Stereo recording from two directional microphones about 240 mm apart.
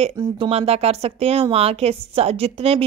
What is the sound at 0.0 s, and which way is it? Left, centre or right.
Speech, right.